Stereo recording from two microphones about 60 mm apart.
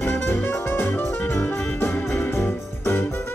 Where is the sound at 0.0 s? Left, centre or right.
Left.